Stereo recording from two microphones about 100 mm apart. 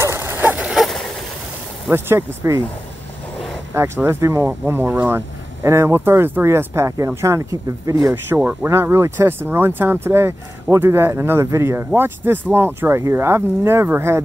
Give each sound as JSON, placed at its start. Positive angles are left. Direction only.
{"t": 0.0, "sound": "dog", "side_deg": -25}
{"t": 1.9, "sound": "speech", "side_deg": -25}
{"t": 3.7, "sound": "speech", "side_deg": -25}
{"t": 8.3, "sound": "speech", "side_deg": -20}